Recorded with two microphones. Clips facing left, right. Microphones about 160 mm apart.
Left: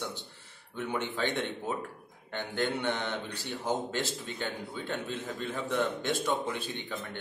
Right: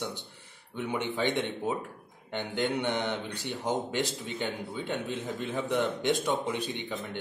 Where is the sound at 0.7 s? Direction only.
15° right (ahead or behind).